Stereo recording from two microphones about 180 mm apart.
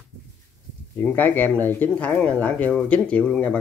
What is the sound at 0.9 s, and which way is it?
Speech, 10° left (ahead or behind).